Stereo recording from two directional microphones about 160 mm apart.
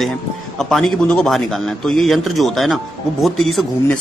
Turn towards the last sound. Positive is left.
turn(degrees=0)  # may be behind; listen again after turning